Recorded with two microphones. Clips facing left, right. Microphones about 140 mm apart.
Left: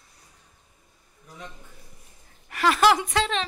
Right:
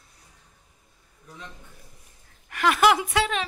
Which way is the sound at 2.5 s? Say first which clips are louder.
Even; centre (ahead or behind).